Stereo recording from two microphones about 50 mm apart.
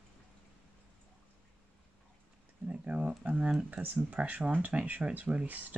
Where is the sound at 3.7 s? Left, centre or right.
Right.